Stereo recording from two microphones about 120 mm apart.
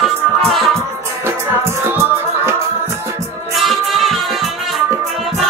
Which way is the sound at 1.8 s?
20° right (ahead or behind).